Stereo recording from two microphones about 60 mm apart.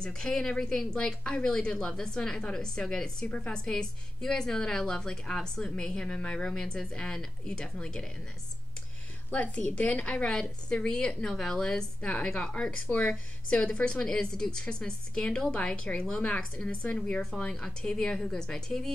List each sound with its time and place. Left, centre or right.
0.0 s speech: centre
9.3 s speech: left
13.1 s speech: centre